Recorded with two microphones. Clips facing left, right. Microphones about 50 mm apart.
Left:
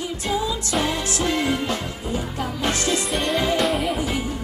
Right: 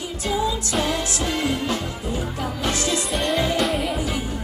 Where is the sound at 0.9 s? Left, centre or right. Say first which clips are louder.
Left 1 dB; left.